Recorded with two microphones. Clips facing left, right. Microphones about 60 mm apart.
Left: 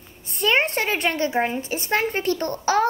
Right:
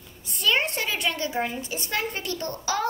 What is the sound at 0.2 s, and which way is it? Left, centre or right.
A child's voice, left.